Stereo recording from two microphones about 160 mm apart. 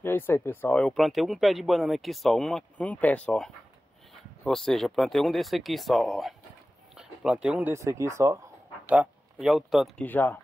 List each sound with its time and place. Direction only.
0.0 s speech: 15° left (ahead or behind)
10.0 s speech: 10° left (ahead or behind)